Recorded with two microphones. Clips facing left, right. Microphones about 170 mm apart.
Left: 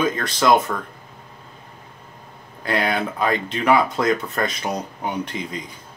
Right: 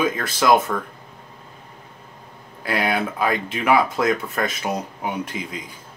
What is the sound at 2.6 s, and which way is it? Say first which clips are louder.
Speech: even; 5° right (ahead or behind).